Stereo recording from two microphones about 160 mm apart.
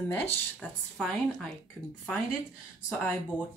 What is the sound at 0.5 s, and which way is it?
Speech, centre (ahead or behind).